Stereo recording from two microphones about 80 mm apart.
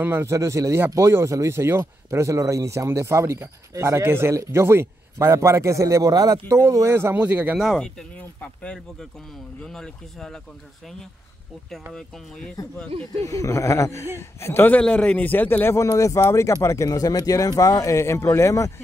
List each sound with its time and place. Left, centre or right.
0.0 s speech: right
7.2 s speech: centre
7.6 s speech: centre
8.2 s a man's voice: centre
9.6 s speech: centre
11.9 s speech: centre
13.2 s a man's voice: left
14.8 s a man's voice: centre
15.7 s speech: left